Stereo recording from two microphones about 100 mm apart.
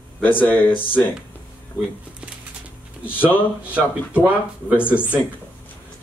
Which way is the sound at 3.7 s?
15° right (ahead or behind).